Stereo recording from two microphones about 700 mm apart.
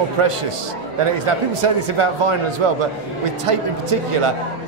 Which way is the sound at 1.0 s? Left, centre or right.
Right.